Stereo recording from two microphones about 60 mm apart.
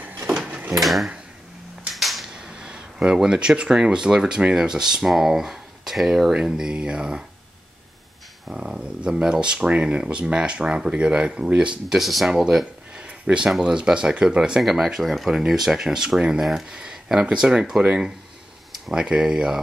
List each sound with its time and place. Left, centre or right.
0.5 s drawer open or close: right
0.7 s speech: centre
2.0 s a sound: centre
2.3 s a sound: centre
3.2 s speech: centre
8.5 s speech: centre
12.0 s speech: centre
12.3 s speech: centre
12.9 s a sound: centre
13.5 s speech: centre
14.6 s speech: centre